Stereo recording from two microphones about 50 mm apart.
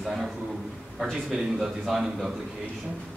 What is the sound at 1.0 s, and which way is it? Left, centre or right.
A man's voice, centre.